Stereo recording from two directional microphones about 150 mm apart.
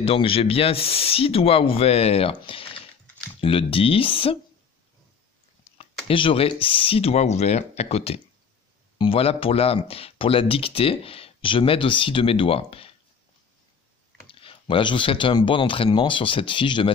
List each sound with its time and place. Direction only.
0.0 s speech: 40° left (ahead or behind)
5.8 s speech: 35° left (ahead or behind)
14.2 s speech: 35° left (ahead or behind)